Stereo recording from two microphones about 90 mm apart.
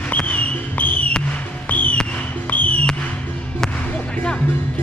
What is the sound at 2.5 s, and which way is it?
Music, 15° left (ahead or behind).